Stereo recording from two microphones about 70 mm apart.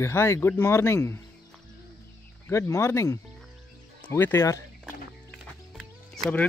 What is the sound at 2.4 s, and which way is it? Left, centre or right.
Speech, left.